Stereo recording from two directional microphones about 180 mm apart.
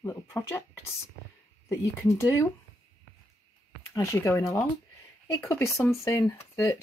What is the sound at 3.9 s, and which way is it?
Speech, 15° left (ahead or behind).